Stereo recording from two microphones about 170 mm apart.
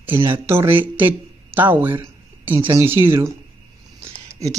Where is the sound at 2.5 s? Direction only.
30° right (ahead or behind).